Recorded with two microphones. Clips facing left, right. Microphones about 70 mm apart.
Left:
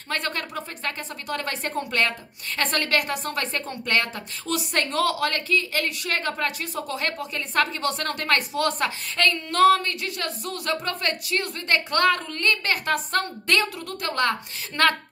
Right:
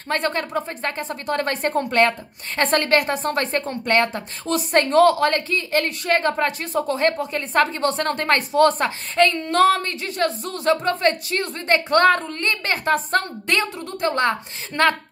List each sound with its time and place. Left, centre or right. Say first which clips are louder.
0.1 s a woman's voice: right 6 dB; right